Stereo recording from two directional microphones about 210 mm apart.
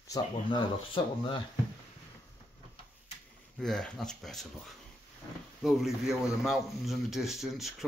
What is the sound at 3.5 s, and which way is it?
A man's voice, centre (ahead or behind).